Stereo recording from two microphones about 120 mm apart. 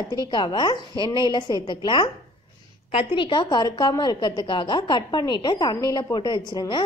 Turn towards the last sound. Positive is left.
turn(degrees=40)  # may be behind; listen again after turning